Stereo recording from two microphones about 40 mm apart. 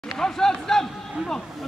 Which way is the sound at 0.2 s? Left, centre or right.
Centre.